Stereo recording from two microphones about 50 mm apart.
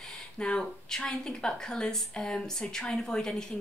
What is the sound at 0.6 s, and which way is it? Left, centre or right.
Speech, centre.